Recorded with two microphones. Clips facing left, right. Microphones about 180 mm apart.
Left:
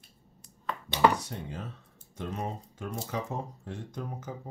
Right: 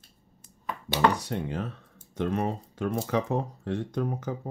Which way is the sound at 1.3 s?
70° right (ahead or behind).